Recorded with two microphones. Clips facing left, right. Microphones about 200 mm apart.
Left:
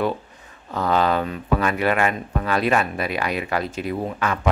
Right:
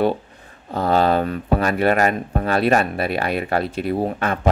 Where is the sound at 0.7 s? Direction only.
35° right (ahead or behind).